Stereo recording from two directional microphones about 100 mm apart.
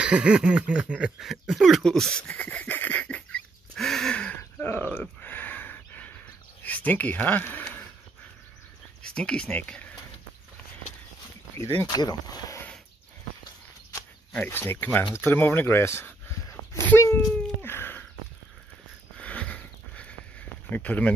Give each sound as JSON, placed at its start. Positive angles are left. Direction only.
{"t": 0.0, "sound": "speech", "side_deg": -10}
{"t": 5.0, "sound": "a sound", "side_deg": 20}
{"t": 6.6, "sound": "speech", "side_deg": 15}
{"t": 9.0, "sound": "speech", "side_deg": 10}
{"t": 11.9, "sound": "speech", "side_deg": 40}
{"t": 14.3, "sound": "speech", "side_deg": 20}
{"t": 17.6, "sound": "a sound", "side_deg": 20}
{"t": 19.1, "sound": "a sound", "side_deg": 10}
{"t": 20.7, "sound": "speech", "side_deg": 15}